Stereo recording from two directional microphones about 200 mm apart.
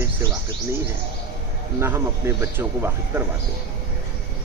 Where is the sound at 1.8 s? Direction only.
15° right (ahead or behind).